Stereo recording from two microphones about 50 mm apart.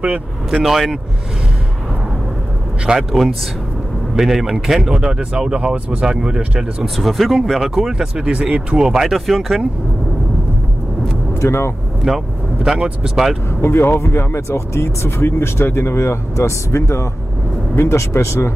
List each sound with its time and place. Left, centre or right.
0.6 s speech: centre
3.1 s speech: centre
6.8 s speech: centre
7.6 s speech: centre
8.3 s speech: right
9.1 s speech: centre
11.3 s speech: left
12.1 s speech: centre
13.6 s speech: left